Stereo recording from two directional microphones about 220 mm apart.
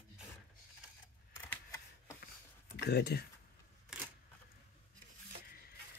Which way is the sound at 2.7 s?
45° left (ahead or behind).